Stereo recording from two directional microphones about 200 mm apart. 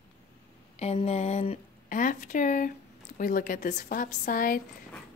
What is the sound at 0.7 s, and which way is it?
A woman's voice, 30° left (ahead or behind).